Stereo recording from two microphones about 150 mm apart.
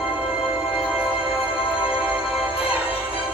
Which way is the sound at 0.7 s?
5° right (ahead or behind).